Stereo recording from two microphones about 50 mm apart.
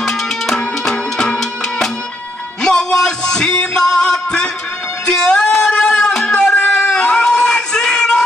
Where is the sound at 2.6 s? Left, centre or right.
Centre.